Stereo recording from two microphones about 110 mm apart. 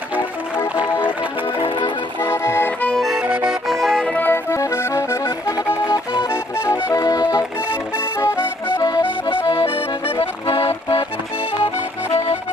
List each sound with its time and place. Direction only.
2.2 s accordion: 20° left (ahead or behind)
3.0 s accordion: 5° right (ahead or behind)
3.3 s music: 15° right (ahead or behind)
3.6 s music: centre (ahead or behind)
4.1 s accordion: 15° left (ahead or behind)
6.6 s music: 30° left (ahead or behind)
8.2 s accordion: 25° left (ahead or behind)
9.3 s accordion: 55° left (ahead or behind)